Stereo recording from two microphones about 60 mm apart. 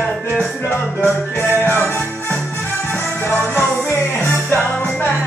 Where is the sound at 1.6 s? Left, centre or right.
Left.